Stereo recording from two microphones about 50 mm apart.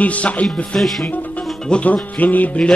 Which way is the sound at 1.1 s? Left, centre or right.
Left.